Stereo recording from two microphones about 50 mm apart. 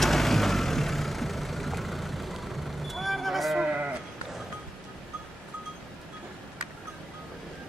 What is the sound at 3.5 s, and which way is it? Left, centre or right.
Sheep, right.